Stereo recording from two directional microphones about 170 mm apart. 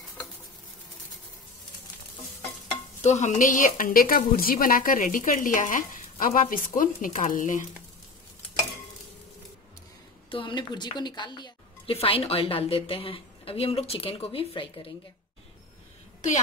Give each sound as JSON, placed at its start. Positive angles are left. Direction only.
{"t": 3.0, "sound": "a woman's voice", "side_deg": 40}
{"t": 10.3, "sound": "a woman's voice", "side_deg": 30}